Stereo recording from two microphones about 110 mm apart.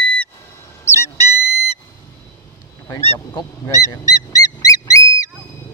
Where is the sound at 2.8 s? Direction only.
25° left (ahead or behind).